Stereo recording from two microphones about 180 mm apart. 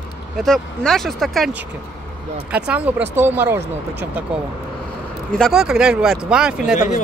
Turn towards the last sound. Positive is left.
turn(degrees=-5)  # may be behind; listen again after turning